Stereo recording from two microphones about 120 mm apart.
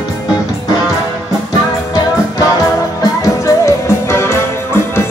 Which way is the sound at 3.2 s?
25° left (ahead or behind).